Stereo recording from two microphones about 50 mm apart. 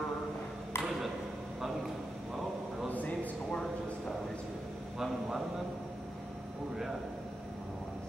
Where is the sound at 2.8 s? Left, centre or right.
Left.